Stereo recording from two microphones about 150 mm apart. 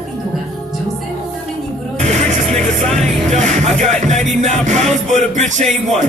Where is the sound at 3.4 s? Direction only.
50° right (ahead or behind).